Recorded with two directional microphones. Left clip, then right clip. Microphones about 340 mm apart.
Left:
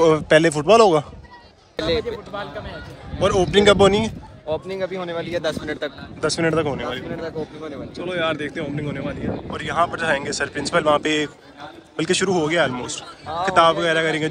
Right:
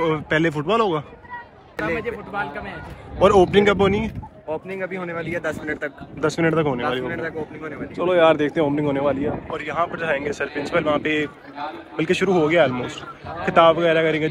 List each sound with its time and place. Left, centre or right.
0.0 s a man's voice: centre
3.2 s speech: centre
4.5 s speech: left
6.2 s speech: centre
7.2 s a man's voice: centre
8.0 s speech: centre